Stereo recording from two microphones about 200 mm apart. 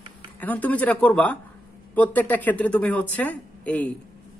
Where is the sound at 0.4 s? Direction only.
10° left (ahead or behind).